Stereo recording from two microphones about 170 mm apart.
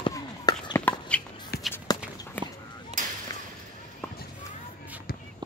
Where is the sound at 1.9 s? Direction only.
25° left (ahead or behind).